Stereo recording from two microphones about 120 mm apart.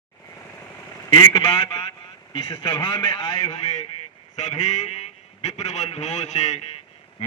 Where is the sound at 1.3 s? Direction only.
50° left (ahead or behind).